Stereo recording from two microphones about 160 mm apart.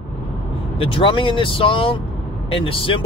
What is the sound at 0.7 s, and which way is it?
Speech, 35° left (ahead or behind).